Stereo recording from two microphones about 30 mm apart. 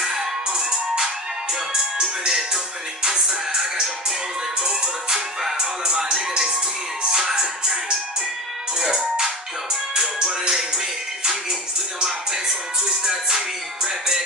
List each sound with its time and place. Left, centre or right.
0.0 s music: centre
4.6 s music: centre
8.7 s music: centre
10.4 s music: right
13.0 s music: centre